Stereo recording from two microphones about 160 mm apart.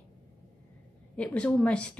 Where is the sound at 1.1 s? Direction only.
5° left (ahead or behind).